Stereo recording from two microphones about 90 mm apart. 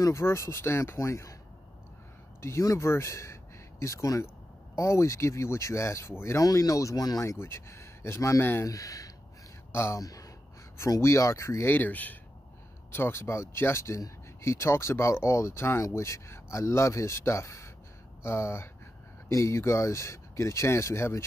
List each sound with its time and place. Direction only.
0.0 s speech: 30° left (ahead or behind)
2.4 s speech: 35° left (ahead or behind)
8.6 s speech: 40° left (ahead or behind)
11.7 s speech: 20° left (ahead or behind)